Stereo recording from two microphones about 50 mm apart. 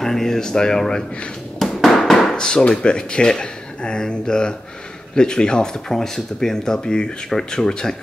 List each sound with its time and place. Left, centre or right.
0.0 s speech: centre
1.6 s a sound: centre
2.3 s speech: centre